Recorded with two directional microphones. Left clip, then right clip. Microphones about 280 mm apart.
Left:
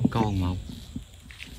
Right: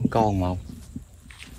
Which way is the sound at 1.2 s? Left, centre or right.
Centre.